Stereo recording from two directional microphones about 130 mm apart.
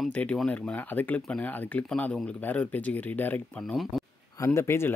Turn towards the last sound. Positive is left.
turn(degrees=20)  # may be behind; listen again after turning